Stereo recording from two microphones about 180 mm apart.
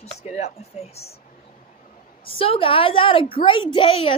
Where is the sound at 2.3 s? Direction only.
30° left (ahead or behind).